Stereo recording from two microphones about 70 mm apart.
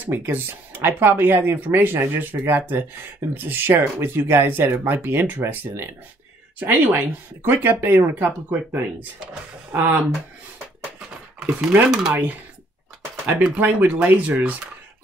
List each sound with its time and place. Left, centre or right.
0.0 s speech: right
11.3 s speech: centre
13.4 s speech: right